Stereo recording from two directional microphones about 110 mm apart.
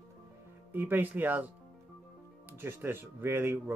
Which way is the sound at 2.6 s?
20° right (ahead or behind).